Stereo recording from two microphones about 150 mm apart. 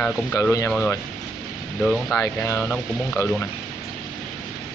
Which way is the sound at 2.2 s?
15° left (ahead or behind).